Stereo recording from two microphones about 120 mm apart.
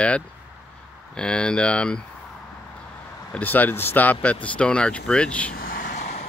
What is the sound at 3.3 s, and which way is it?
Speech, 15° left (ahead or behind).